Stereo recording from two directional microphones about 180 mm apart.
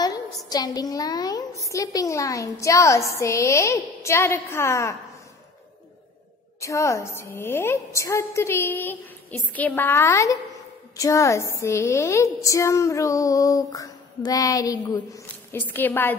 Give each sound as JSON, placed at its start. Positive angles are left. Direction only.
{"t": 0.5, "sound": "a woman's voice", "side_deg": 20}
{"t": 6.6, "sound": "a woman's voice", "side_deg": 15}